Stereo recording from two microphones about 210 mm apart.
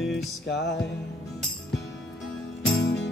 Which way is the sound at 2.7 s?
50° left (ahead or behind).